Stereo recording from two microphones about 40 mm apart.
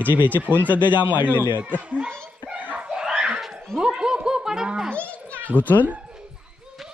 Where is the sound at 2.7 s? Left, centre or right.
Right.